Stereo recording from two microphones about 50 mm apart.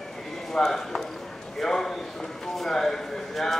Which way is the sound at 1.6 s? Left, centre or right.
Centre.